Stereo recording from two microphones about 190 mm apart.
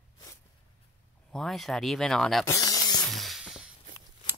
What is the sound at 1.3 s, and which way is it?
Speech, centre (ahead or behind).